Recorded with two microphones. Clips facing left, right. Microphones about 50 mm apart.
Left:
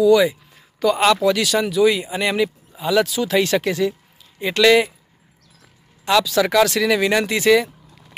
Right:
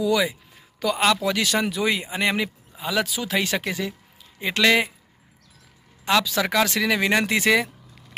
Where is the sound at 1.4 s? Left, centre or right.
Right.